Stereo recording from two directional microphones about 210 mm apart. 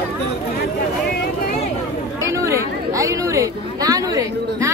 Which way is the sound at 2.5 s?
15° right (ahead or behind).